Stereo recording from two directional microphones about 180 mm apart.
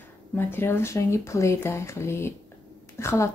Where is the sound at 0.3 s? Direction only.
10° left (ahead or behind).